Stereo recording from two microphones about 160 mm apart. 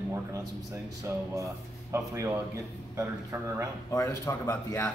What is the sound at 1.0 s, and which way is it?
A man's voice, 20° right (ahead or behind).